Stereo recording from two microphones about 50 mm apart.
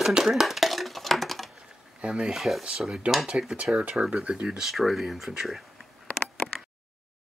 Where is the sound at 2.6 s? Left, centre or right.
Centre.